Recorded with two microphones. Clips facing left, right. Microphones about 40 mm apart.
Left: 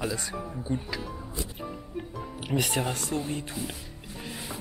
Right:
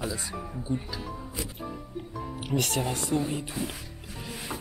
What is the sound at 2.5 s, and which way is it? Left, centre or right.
Speech, centre.